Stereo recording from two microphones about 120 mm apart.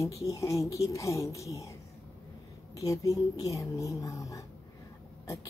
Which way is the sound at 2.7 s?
25° left (ahead or behind).